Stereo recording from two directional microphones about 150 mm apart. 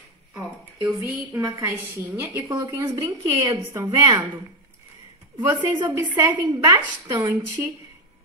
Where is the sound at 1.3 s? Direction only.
15° right (ahead or behind).